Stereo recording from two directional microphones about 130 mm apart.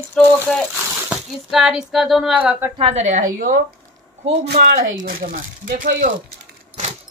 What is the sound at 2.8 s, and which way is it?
Speech, 55° right (ahead or behind).